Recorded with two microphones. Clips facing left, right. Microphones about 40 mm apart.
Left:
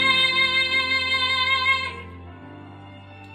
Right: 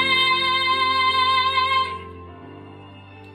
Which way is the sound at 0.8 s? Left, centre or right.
Right.